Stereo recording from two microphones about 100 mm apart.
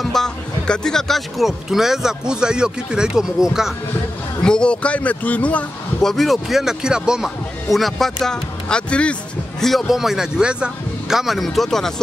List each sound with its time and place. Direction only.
0.0 s speech: 5° left (ahead or behind)
4.4 s a man's voice: 10° left (ahead or behind)
6.1 s speech: centre (ahead or behind)